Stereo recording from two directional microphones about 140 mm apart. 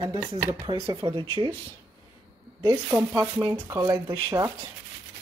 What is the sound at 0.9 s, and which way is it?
Speech, 30° right (ahead or behind).